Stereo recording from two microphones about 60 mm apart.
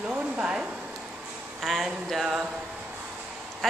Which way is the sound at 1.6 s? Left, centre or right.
Centre.